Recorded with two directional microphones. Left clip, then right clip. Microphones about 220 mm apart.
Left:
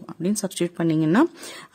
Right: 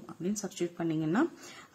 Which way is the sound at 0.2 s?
50° left (ahead or behind).